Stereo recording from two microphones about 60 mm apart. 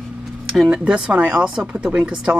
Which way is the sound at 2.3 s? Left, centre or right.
Right.